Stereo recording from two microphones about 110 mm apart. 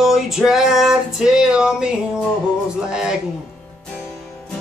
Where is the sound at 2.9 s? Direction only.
5° right (ahead or behind).